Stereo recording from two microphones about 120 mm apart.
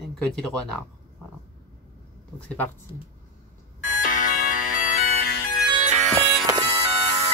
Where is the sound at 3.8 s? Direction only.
90° left.